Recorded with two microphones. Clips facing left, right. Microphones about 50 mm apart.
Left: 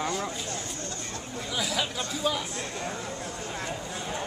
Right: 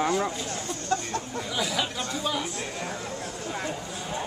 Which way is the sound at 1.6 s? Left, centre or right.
Centre.